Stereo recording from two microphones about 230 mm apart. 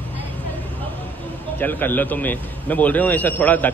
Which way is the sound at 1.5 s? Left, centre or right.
Centre.